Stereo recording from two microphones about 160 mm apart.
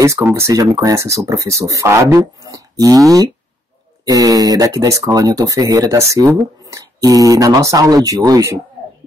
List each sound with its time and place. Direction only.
0.0 s speech: 20° right (ahead or behind)